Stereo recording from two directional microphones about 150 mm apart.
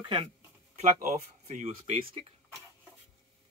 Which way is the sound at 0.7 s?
50° right (ahead or behind).